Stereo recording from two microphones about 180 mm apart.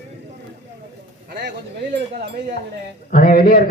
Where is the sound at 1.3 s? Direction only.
65° right (ahead or behind).